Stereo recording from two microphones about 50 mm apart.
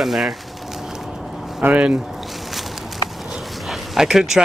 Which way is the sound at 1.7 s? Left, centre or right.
Right.